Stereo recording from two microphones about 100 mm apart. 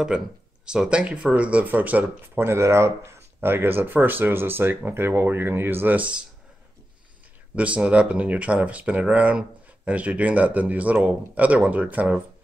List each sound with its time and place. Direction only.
0.1 s speech: 10° right (ahead or behind)
7.5 s speech: 15° right (ahead or behind)